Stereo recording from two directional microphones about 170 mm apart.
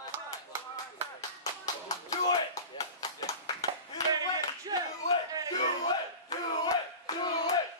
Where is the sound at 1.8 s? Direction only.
20° left (ahead or behind).